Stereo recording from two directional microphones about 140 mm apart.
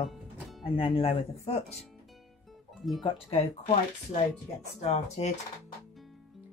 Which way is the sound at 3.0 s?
35° left (ahead or behind).